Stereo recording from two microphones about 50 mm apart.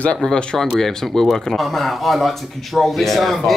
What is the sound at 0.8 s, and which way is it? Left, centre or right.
Speech, centre.